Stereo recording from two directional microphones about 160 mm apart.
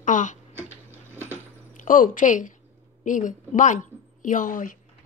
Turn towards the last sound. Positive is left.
turn(degrees=55)  # may be behind; listen again after turning